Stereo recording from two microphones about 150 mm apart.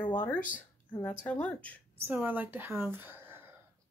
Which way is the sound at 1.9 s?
15° right (ahead or behind).